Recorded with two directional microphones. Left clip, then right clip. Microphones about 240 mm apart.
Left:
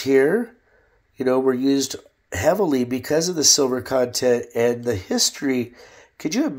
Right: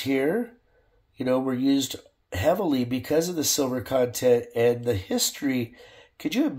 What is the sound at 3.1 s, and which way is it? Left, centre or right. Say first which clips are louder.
Speech: left 3 dB; left.